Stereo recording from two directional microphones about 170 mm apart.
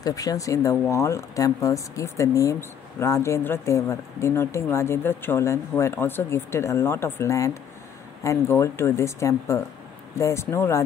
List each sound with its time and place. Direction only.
0.0 s a woman's voice: 20° left (ahead or behind)